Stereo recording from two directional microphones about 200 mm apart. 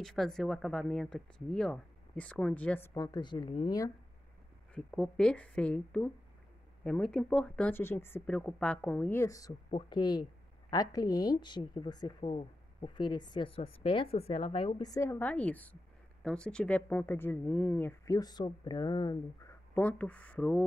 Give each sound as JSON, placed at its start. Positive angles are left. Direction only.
{"t": 0.0, "sound": "speech", "side_deg": 0}
{"t": 4.7, "sound": "a woman's voice", "side_deg": 5}
{"t": 19.7, "sound": "a woman's voice", "side_deg": 5}